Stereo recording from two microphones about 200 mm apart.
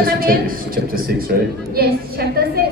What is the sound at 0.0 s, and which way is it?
A woman's voice, 45° right (ahead or behind).